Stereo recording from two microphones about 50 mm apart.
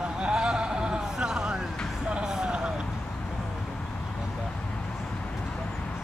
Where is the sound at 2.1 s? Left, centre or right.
Centre.